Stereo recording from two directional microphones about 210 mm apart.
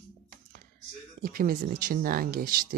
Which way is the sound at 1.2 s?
45° right (ahead or behind).